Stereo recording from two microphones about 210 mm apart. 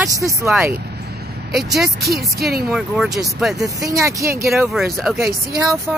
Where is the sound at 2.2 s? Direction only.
50° right (ahead or behind).